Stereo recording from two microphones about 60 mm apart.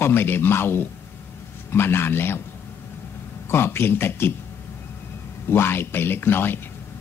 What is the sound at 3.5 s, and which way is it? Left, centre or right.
Speech, left.